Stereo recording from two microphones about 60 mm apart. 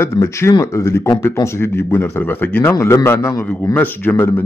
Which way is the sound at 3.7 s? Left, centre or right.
Left.